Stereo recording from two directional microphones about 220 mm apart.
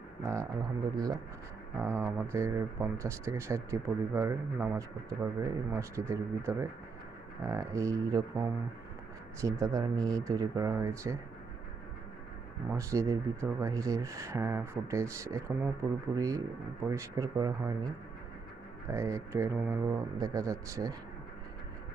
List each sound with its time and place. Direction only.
0.2 s speech: 15° right (ahead or behind)
12.7 s speech: 15° right (ahead or behind)
18.9 s speech: 15° right (ahead or behind)